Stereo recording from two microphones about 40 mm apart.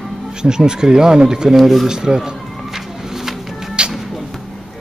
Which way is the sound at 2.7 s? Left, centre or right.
Centre.